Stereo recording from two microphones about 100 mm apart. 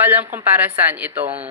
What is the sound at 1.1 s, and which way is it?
Speech, 90° right.